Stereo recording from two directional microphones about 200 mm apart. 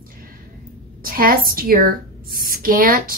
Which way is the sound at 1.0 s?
45° right (ahead or behind).